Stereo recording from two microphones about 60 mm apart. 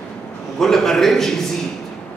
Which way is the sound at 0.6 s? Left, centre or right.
Centre.